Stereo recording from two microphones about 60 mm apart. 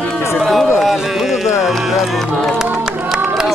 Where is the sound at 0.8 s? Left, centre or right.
Centre.